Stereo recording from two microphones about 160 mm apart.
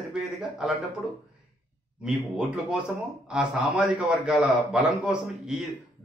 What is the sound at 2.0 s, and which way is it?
A man's voice, 5° right (ahead or behind).